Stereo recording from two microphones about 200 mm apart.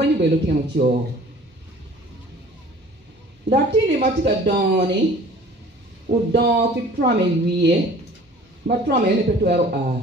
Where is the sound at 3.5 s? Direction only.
50° right (ahead or behind).